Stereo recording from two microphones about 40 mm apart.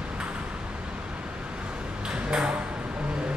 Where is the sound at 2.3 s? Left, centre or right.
Right.